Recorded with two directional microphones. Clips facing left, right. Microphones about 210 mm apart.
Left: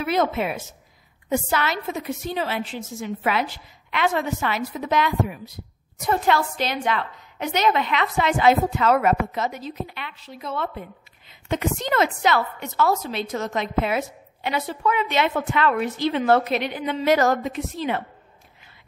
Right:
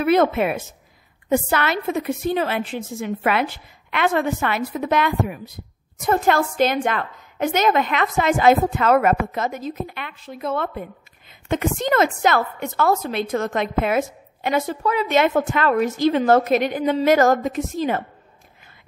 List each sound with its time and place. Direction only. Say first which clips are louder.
0.0 s a woman's voice: right 5 dB; 55° right (ahead or behind)